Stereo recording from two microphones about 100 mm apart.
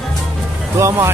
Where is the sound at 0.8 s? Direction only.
30° right (ahead or behind).